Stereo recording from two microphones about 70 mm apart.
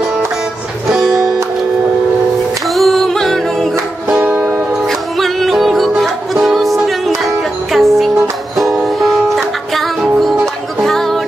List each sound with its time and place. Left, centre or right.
0.8 s music: centre
2.7 s music: centre
4.2 s music: centre
4.8 s music: centre